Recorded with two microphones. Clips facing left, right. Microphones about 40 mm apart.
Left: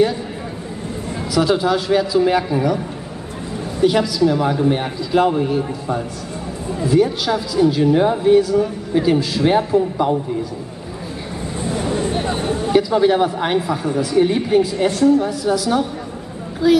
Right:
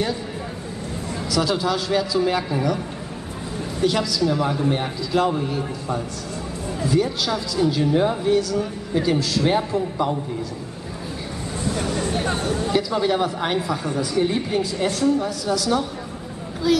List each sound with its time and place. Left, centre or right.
1.3 s speech: centre
3.8 s speech: centre
11.6 s a sound: left
12.4 s speech: left